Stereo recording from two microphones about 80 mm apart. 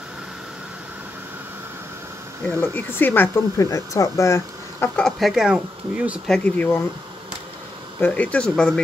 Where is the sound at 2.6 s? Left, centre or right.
Left.